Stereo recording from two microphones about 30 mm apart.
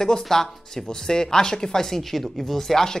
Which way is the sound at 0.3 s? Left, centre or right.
Centre.